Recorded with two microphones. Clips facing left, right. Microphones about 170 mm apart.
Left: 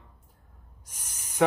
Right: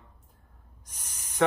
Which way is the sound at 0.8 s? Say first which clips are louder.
Even; 10° left (ahead or behind).